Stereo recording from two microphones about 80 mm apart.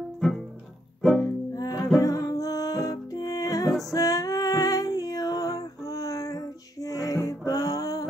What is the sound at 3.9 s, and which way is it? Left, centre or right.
Female singing, left.